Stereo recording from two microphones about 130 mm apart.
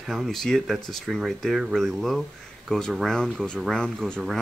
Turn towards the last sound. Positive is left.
turn(degrees=5)  # may be behind; listen again after turning